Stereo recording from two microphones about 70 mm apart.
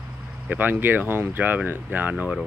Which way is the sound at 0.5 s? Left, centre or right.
Right.